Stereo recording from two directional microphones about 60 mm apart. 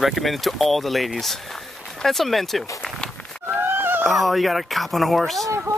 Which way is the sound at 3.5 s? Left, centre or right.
Right.